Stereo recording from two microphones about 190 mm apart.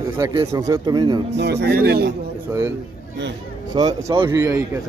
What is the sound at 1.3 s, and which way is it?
Speech, 60° right (ahead or behind).